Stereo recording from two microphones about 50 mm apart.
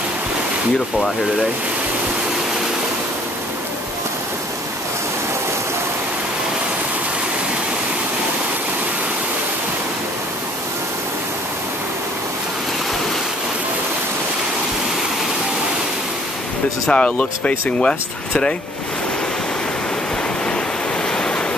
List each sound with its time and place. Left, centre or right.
16.9 s speech: left
21.1 s waves: centre